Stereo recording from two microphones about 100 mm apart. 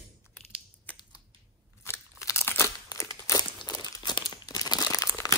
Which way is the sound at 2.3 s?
25° left (ahead or behind).